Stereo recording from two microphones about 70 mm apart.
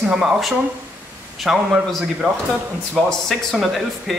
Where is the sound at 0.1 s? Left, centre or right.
Centre.